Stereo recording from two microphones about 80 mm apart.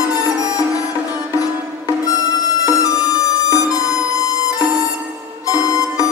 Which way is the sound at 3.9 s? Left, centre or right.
Centre.